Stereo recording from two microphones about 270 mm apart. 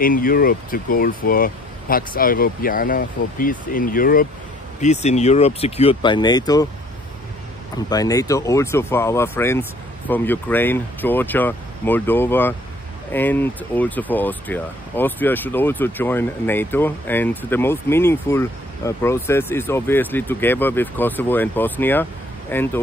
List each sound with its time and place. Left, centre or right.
0.0 s speech: left; by 6.7 s centre
7.7 s speech: centre